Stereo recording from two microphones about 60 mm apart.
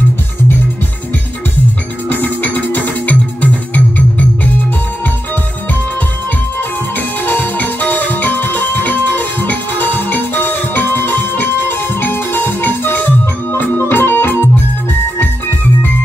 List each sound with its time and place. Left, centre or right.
2.0 s music: left
7.0 s music: left